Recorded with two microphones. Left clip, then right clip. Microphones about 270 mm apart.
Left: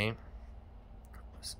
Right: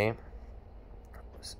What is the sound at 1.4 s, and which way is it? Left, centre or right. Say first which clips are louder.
Speech: left 1 dB; centre.